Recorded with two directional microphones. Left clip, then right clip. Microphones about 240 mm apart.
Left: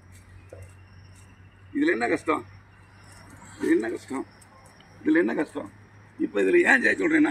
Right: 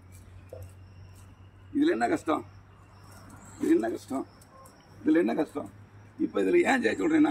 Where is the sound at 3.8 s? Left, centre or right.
Centre.